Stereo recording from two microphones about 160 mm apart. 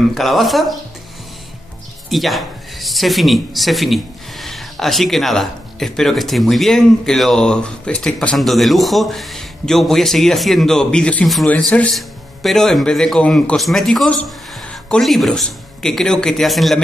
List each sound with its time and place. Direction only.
0.1 s speech: centre (ahead or behind)
2.0 s speech: centre (ahead or behind)